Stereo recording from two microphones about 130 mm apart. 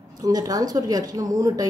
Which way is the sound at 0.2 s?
30° right (ahead or behind).